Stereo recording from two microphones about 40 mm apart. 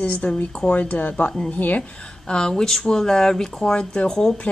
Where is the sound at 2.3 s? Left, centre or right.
Centre.